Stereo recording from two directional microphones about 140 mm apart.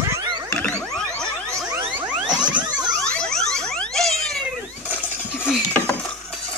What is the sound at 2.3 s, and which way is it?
Pulse, 5° right (ahead or behind).